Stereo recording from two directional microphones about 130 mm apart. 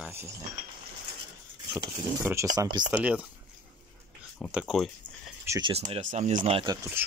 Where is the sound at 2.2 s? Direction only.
25° right (ahead or behind).